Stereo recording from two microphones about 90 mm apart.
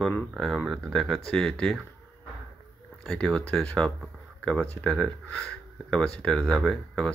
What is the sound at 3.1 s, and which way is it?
Speech, 10° left (ahead or behind).